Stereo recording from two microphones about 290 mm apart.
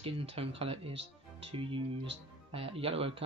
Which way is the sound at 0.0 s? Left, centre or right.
Centre.